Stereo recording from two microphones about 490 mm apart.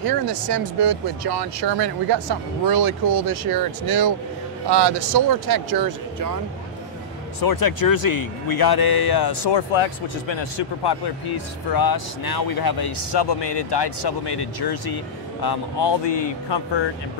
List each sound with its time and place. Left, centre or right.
0.0 s speech: right
7.4 s speech: left